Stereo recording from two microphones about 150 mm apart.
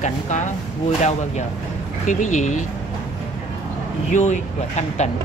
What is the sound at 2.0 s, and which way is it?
Speech, 55° left (ahead or behind).